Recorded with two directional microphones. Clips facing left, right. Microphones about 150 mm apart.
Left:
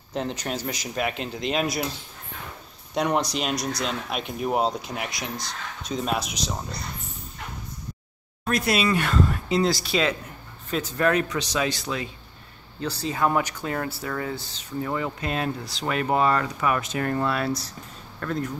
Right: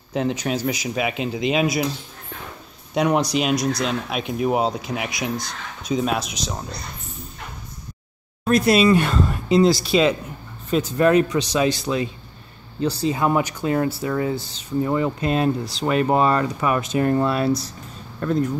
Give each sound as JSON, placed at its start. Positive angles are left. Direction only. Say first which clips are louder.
{"t": 0.1, "sound": "speech", "louder": "right 6 dB", "side_deg": -5}
{"t": 2.9, "sound": "speech", "louder": "right 5 dB", "side_deg": -5}
{"t": 8.5, "sound": "speech", "louder": "right 7 dB", "side_deg": -30}